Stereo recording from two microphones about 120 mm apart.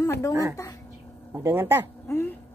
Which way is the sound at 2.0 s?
15° left (ahead or behind).